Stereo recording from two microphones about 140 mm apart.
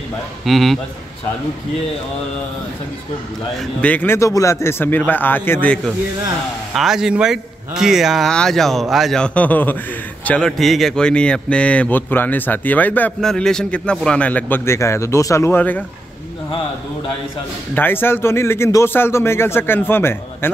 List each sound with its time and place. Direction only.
0.5 s speech: centre (ahead or behind)
3.8 s speech: 10° left (ahead or behind)
6.7 s speech: 5° right (ahead or behind); by 15.8 s 15° left (ahead or behind)
17.7 s speech: 15° left (ahead or behind)